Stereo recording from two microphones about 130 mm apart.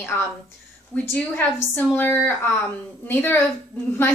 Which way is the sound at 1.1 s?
10° left (ahead or behind).